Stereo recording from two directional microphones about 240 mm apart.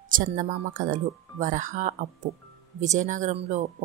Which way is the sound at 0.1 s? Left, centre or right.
Right.